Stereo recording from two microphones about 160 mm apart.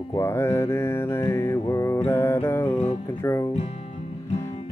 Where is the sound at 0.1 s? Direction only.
15° left (ahead or behind).